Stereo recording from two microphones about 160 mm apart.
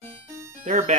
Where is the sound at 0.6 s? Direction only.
50° right (ahead or behind).